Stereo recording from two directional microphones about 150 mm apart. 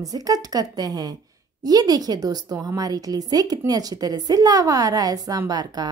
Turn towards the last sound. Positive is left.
turn(degrees=-25)  # may be behind; listen again after turning